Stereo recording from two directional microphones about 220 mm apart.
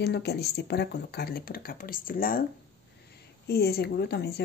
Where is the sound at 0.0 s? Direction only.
50° left (ahead or behind).